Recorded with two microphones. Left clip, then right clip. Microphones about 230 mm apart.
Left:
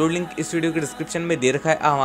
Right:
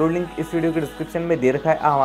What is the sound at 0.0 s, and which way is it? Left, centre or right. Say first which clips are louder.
A man's voice: right 1 dB; left.